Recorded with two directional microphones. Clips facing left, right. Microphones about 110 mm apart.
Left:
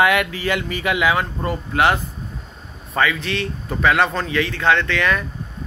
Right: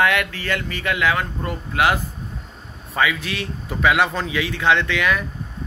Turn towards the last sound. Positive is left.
turn(degrees=-5)  # may be behind; listen again after turning